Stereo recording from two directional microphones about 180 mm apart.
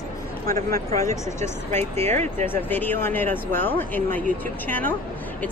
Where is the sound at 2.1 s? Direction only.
40° right (ahead or behind).